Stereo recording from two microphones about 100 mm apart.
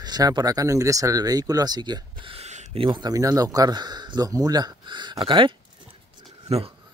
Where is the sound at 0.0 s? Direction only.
45° right (ahead or behind).